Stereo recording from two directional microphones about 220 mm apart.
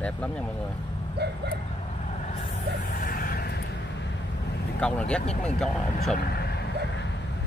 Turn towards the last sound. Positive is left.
turn(degrees=0)  # may be behind; listen again after turning